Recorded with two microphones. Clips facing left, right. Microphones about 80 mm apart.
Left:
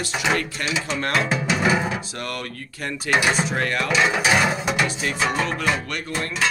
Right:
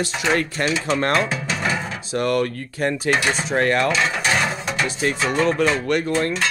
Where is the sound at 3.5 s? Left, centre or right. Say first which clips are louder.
Right 5 dB; right.